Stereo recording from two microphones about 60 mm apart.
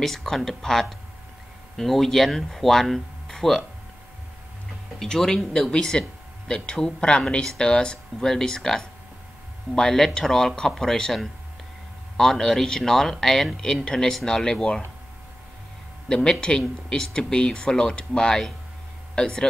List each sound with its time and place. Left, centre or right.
0.0 s speech: centre
4.9 s speech: centre
16.1 s speech: centre